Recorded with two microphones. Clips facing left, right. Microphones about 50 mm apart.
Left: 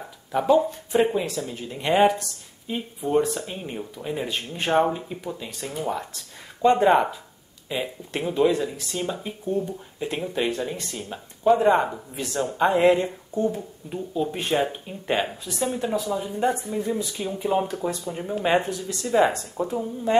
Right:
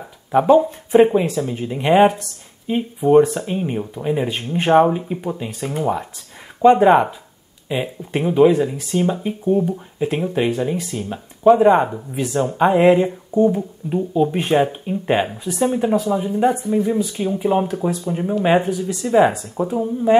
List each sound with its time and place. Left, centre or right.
0.3 s speech: right